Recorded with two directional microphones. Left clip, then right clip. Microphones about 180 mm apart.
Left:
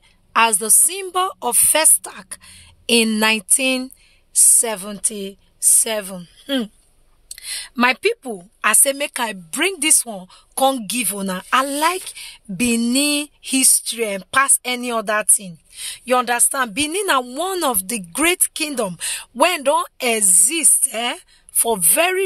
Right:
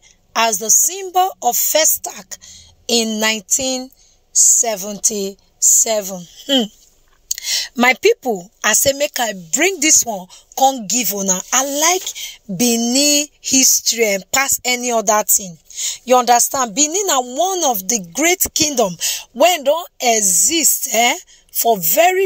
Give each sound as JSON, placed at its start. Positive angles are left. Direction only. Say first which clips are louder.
{"t": 0.3, "sound": "a woman's voice", "louder": "right 1 dB", "side_deg": 5}
{"t": 4.6, "sound": "a woman's voice", "louder": "right 4 dB", "side_deg": 0}
{"t": 7.2, "sound": "clicking", "louder": "right 10 dB", "side_deg": -30}
{"t": 7.8, "sound": "a woman's voice", "louder": "right 4 dB", "side_deg": -20}
{"t": 19.6, "sound": "a woman's voice", "louder": "right 1 dB", "side_deg": 15}
{"t": 20.0, "sound": "a woman's voice", "louder": "right 4 dB", "side_deg": 0}
{"t": 21.5, "sound": "a woman's voice", "louder": "right 5 dB", "side_deg": 0}